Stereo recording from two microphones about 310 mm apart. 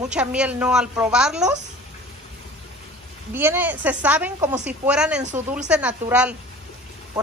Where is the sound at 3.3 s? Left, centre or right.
Centre.